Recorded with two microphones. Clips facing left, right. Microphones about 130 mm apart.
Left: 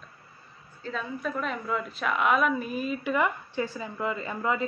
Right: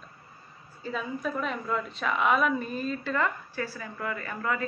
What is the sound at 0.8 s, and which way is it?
A woman's voice, 5° right (ahead or behind).